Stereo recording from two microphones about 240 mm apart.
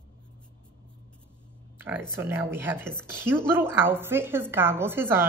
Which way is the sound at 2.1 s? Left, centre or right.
Centre.